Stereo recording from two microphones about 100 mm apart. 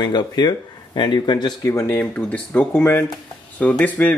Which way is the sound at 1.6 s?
30° left (ahead or behind).